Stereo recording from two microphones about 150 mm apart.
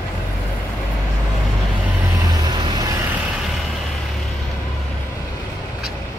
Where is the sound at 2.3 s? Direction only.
30° right (ahead or behind).